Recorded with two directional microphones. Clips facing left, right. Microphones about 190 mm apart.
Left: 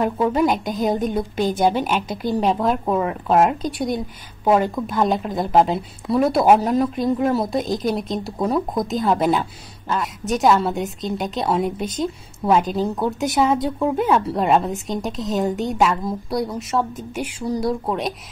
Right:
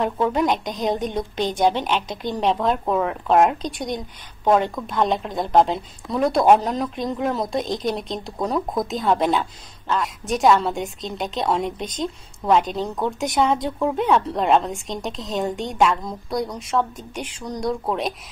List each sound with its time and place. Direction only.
0.0 s speech: 5° left (ahead or behind)